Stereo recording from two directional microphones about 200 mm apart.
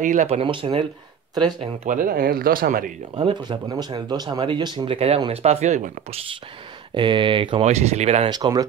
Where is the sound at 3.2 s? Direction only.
25° right (ahead or behind).